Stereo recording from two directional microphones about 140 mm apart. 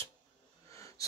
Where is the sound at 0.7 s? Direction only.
20° left (ahead or behind).